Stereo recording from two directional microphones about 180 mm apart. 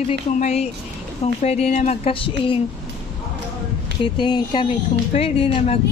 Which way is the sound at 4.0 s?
25° left (ahead or behind).